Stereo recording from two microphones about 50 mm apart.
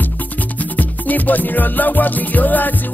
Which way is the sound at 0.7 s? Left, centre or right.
Left.